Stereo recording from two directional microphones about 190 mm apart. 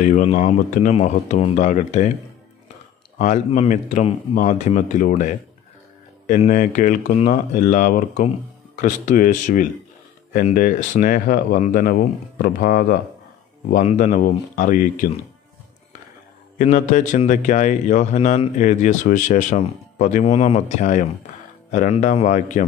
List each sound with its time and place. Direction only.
0.0 s a man's voice: 40° left (ahead or behind)
3.2 s a man's voice: 40° left (ahead or behind)
16.5 s a man's voice: 40° left (ahead or behind)